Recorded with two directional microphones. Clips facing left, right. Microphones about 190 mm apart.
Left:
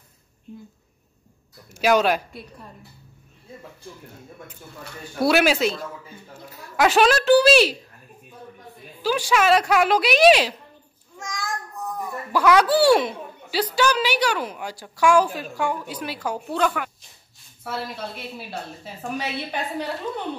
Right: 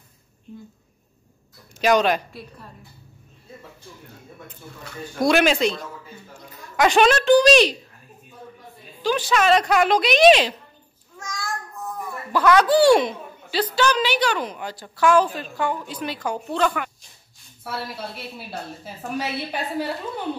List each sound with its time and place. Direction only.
1.8 s a woman's voice: 10° left (ahead or behind)
5.2 s a woman's voice: 5° left (ahead or behind)
9.0 s a woman's voice: 10° left (ahead or behind)
11.3 s child singing: 15° left (ahead or behind)
12.3 s a woman's voice: 10° left (ahead or behind)
17.9 s a woman's voice: centre (ahead or behind)